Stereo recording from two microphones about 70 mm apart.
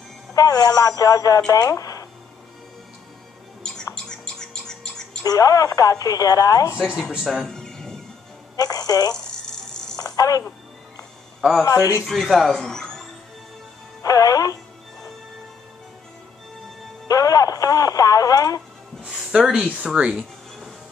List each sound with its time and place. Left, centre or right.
0.3 s speech: left
3.9 s a sound: centre
5.2 s speech: left
7.1 s speech: centre
7.4 s a sound: centre
8.5 s speech: left
10.1 s speech: left
11.6 s speech: left
12.1 s speech: centre
14.0 s music: left
17.1 s radio: left
19.0 s speech: centre
20.2 s a sound: centre